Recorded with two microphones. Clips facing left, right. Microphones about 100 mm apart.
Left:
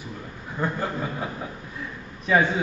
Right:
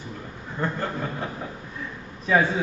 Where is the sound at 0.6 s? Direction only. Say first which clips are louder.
Left 1 dB; 10° left (ahead or behind).